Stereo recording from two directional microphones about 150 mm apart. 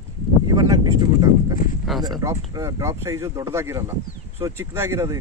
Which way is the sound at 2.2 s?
20° right (ahead or behind).